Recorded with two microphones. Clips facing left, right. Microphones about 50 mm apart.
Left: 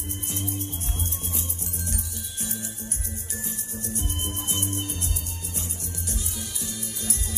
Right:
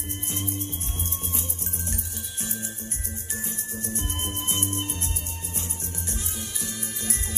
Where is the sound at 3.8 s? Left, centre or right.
Right.